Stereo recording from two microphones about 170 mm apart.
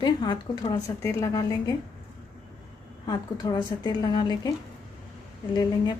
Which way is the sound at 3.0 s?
25° left (ahead or behind).